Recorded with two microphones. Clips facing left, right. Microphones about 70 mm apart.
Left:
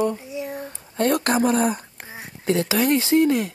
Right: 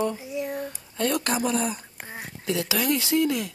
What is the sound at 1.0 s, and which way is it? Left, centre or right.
Speech, left.